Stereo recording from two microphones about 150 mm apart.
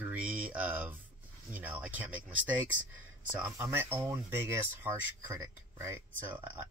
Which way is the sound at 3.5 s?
20° right (ahead or behind).